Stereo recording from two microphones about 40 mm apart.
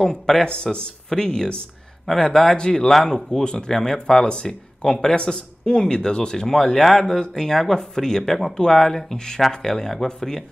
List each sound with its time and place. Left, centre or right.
0.1 s speech: centre